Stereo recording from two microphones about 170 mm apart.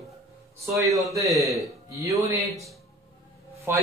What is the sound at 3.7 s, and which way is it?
Speech, 15° right (ahead or behind).